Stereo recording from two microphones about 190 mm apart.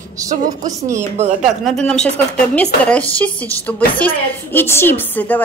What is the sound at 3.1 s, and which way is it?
A woman's voice, 10° left (ahead or behind).